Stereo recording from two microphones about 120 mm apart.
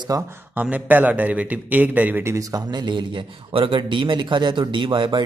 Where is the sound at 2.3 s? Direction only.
35° right (ahead or behind).